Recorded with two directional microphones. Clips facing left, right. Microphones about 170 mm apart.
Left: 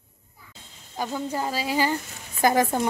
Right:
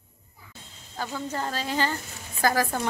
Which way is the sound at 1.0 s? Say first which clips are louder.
Left 3 dB; 15° left (ahead or behind).